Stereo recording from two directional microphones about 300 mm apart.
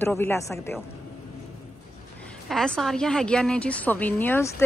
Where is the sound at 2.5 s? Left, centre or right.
Centre.